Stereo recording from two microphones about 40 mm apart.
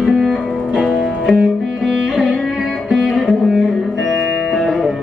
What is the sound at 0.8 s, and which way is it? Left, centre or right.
Music, centre.